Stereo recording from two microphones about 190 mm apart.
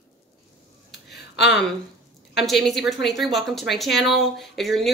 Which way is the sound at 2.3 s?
Centre (ahead or behind).